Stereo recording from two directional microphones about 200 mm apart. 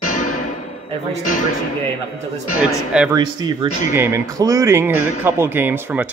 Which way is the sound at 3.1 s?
20° right (ahead or behind).